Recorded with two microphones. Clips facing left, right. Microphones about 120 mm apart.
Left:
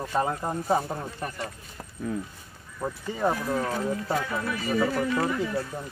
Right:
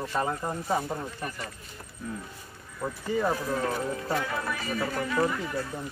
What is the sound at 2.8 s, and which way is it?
Speech, 15° left (ahead or behind).